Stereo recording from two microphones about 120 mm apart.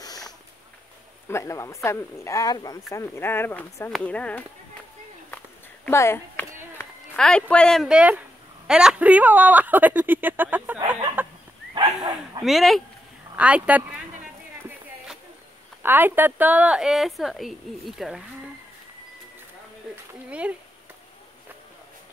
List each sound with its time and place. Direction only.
0.0 s a sound: 35° left (ahead or behind)
1.3 s speech: 25° left (ahead or behind)
2.9 s speech: 20° left (ahead or behind)
5.9 s a sound: 20° left (ahead or behind)
7.2 s speech: 5° left (ahead or behind)
7.9 s speech: 10° right (ahead or behind)
11.7 s dog: 40° right (ahead or behind)
12.4 s speech: centre (ahead or behind)
13.4 s speech: 10° right (ahead or behind)
15.8 s speech: 15° right (ahead or behind)
20.2 s speech: 10° right (ahead or behind)